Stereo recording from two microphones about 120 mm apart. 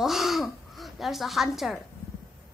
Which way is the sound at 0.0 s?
Centre (ahead or behind).